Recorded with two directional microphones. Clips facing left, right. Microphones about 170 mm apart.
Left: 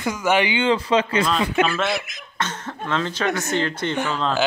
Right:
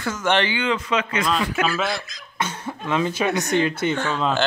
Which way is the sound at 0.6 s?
30° left (ahead or behind).